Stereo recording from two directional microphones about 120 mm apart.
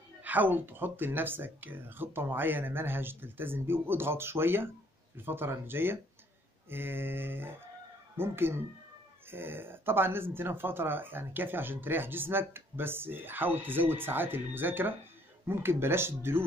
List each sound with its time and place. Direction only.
0.2 s speech: 15° right (ahead or behind)